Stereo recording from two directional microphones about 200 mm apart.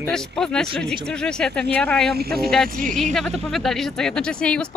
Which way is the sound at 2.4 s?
Centre (ahead or behind).